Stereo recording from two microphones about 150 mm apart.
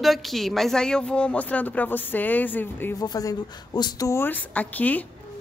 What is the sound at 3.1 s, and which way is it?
A woman's voice, 25° left (ahead or behind).